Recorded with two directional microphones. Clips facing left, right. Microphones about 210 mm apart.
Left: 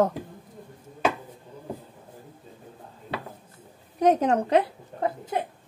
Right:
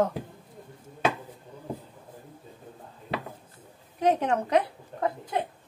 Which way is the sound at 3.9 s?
40° left (ahead or behind).